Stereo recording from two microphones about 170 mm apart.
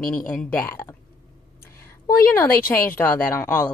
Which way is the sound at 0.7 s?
20° left (ahead or behind).